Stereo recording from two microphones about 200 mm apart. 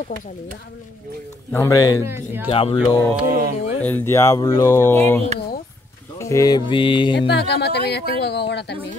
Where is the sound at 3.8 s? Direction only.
10° left (ahead or behind).